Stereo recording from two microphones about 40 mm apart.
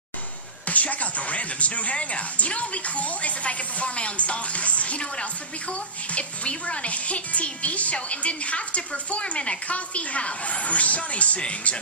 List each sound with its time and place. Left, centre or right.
0.7 s speech: left